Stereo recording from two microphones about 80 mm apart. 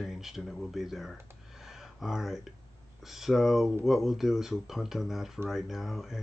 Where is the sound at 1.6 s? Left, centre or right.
Centre.